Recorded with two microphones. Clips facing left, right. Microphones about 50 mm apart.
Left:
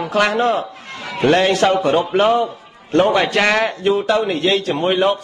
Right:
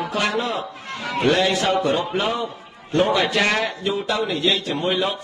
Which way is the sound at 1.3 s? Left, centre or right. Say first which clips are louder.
Left 6 dB; left.